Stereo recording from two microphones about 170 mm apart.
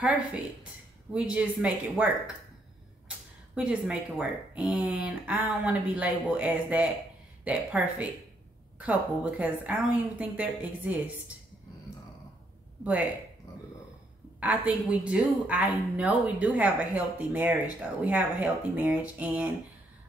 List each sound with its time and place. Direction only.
1.1 s a woman's voice: 5° right (ahead or behind)
13.5 s burping: 20° left (ahead or behind)
14.4 s a woman's voice: 10° right (ahead or behind)